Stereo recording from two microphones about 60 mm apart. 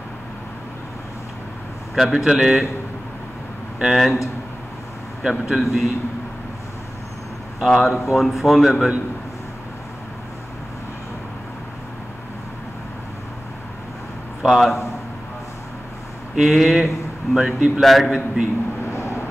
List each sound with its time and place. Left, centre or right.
2.0 s speech: centre
3.8 s speech: centre
5.4 s speech: centre
7.6 s speech: centre
14.4 s speech: centre
16.3 s speech: centre
18.9 s vehicle: left